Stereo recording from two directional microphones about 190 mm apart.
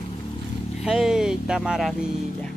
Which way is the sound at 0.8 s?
5° right (ahead or behind).